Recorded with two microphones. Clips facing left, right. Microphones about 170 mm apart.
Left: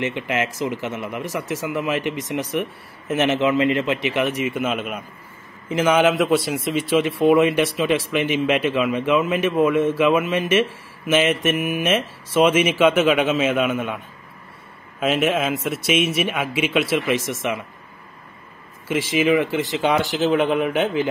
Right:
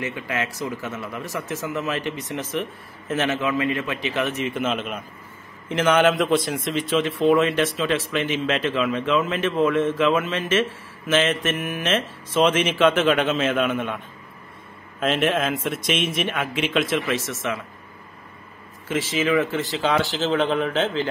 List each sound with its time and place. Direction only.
0.0 s a man's voice: 20° left (ahead or behind)
18.9 s a man's voice: 10° left (ahead or behind)